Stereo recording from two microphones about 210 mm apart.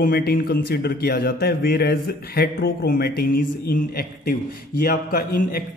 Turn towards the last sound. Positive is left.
turn(degrees=45)  # may be behind; listen again after turning